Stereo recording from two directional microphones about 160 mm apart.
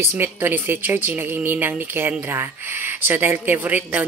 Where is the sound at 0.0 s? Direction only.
15° right (ahead or behind).